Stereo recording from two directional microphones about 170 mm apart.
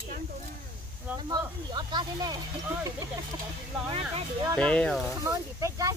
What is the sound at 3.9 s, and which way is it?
Speech, 35° right (ahead or behind).